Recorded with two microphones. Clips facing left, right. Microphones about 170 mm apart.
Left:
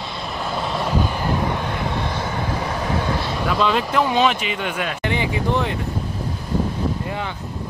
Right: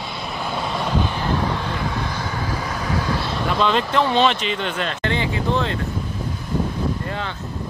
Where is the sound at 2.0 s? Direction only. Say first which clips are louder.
Left 2 dB; 25° left (ahead or behind).